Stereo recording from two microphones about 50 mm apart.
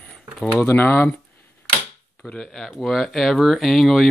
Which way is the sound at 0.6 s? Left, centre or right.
Left.